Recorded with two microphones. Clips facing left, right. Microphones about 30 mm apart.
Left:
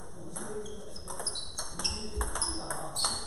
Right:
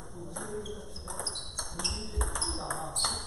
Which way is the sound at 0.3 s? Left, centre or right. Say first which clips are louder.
Right 1 dB; centre.